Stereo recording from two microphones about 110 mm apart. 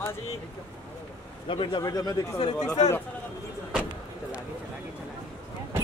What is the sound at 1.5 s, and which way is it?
Speech, 50° left (ahead or behind).